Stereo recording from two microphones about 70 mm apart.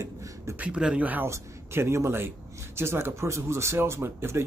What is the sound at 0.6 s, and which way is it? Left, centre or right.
Speech, centre.